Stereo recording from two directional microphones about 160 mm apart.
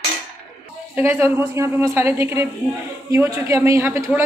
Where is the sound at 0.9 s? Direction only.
15° right (ahead or behind).